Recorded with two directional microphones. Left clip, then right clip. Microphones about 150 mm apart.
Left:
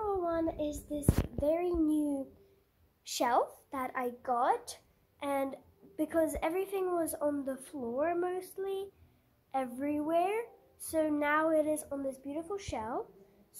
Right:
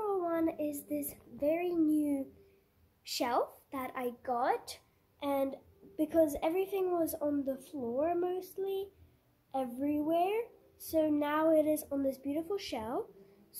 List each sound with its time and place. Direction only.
0.0 s a sound: centre (ahead or behind)
0.9 s speech: centre (ahead or behind)
3.0 s a woman's voice: 5° left (ahead or behind); by 11.9 s 15° right (ahead or behind)
11.9 s speech: 25° right (ahead or behind)